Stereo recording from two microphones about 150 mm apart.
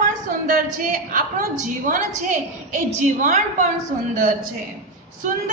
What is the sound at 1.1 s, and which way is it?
A woman's voice, 65° right (ahead or behind).